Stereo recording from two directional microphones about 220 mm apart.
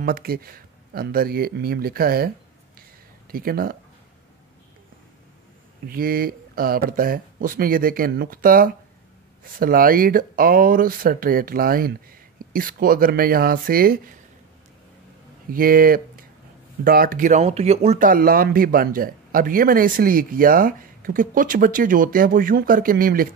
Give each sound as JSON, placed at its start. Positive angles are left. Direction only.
{"t": 0.0, "sound": "speech", "side_deg": -40}
{"t": 5.9, "sound": "speech", "side_deg": -40}
{"t": 15.5, "sound": "speech", "side_deg": -40}